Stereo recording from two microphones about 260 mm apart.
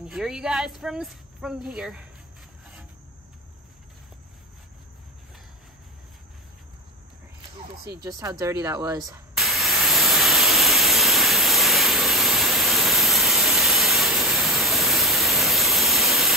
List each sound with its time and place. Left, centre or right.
0.0 s speech: centre
8.0 s speech: centre
9.3 s a sound: centre